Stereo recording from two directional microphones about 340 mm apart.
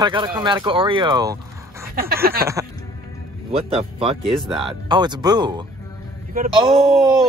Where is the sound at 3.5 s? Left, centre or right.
Centre.